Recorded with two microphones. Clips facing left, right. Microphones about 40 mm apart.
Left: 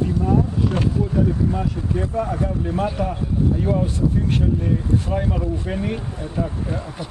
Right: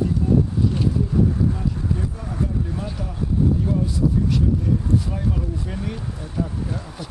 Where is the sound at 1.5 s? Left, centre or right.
Left.